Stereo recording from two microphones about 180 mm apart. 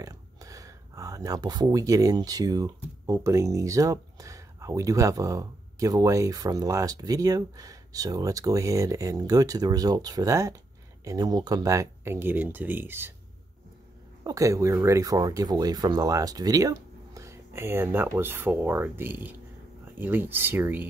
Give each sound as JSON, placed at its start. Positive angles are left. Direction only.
{"t": 0.0, "sound": "speech", "side_deg": -20}
{"t": 14.2, "sound": "speech", "side_deg": -20}